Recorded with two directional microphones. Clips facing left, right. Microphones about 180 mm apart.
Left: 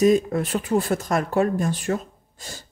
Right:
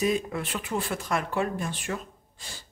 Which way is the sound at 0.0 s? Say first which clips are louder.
Left 9 dB; 40° left (ahead or behind).